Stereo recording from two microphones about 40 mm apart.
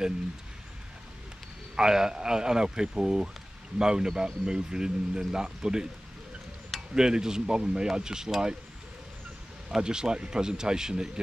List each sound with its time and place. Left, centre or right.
1.8 s a man's voice: centre
7.0 s a man's voice: centre
9.8 s speech: centre